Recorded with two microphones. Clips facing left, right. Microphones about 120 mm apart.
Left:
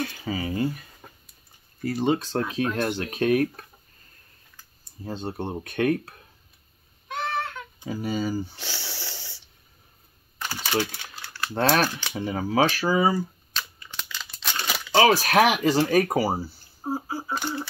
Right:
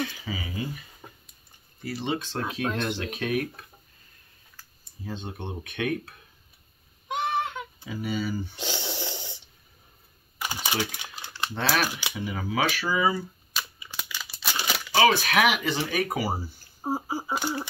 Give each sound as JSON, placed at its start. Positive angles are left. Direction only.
{"t": 0.0, "sound": "speech", "side_deg": 45}
{"t": 1.9, "sound": "speech", "side_deg": 45}
{"t": 5.0, "sound": "speech", "side_deg": 40}
{"t": 7.1, "sound": "a sound", "side_deg": -15}
{"t": 7.8, "sound": "speech", "side_deg": 40}
{"t": 8.5, "sound": "snoring", "side_deg": -20}
{"t": 10.4, "sound": "typing", "side_deg": -15}
{"t": 11.5, "sound": "speech", "side_deg": 45}
{"t": 13.5, "sound": "crumpling", "side_deg": -10}
{"t": 15.0, "sound": "speech", "side_deg": 40}
{"t": 16.8, "sound": "a sound", "side_deg": -10}